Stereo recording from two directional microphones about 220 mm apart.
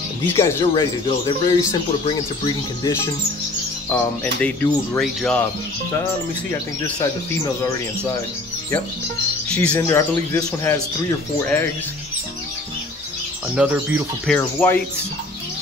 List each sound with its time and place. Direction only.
0.4 s speech: 15° left (ahead or behind)
3.9 s speech: 5° left (ahead or behind)
9.5 s speech: 5° left (ahead or behind)
13.6 s speech: 5° right (ahead or behind)
14.3 s speech: 10° left (ahead or behind)